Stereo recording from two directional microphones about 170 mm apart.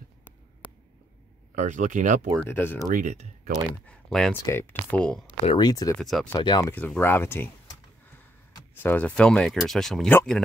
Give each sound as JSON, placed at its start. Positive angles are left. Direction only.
{"t": 1.5, "sound": "speech", "side_deg": -45}
{"t": 2.4, "sound": "speech", "side_deg": 10}
{"t": 2.9, "sound": "speech", "side_deg": -45}
{"t": 3.8, "sound": "speech", "side_deg": 5}
{"t": 5.9, "sound": "speech", "side_deg": 0}
{"t": 6.3, "sound": "speech", "side_deg": 25}
{"t": 6.7, "sound": "speech", "side_deg": 10}
{"t": 8.5, "sound": "speech", "side_deg": 10}